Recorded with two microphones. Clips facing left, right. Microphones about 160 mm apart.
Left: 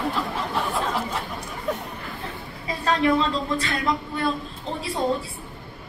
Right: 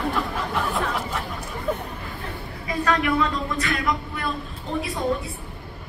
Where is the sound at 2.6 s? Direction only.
25° left (ahead or behind).